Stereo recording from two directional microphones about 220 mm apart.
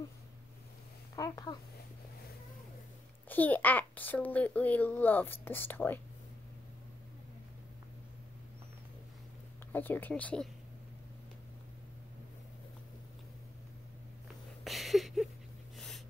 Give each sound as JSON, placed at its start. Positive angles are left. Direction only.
{"t": 1.1, "sound": "a child's voice", "side_deg": 15}
{"t": 3.3, "sound": "a child's voice", "side_deg": 10}
{"t": 9.7, "sound": "a child's voice", "side_deg": 10}
{"t": 14.6, "sound": "a sound", "side_deg": 0}